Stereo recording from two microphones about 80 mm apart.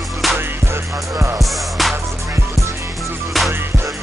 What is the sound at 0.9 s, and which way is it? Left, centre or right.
Music, right.